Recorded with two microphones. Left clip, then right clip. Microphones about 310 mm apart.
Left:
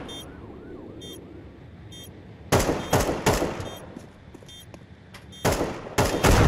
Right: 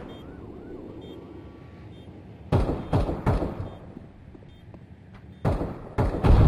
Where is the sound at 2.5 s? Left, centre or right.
Left.